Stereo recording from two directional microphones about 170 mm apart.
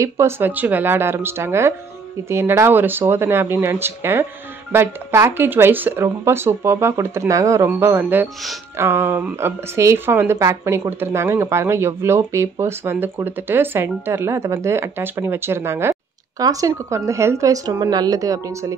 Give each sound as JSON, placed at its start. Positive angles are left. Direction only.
{"t": 0.0, "sound": "speech", "side_deg": -15}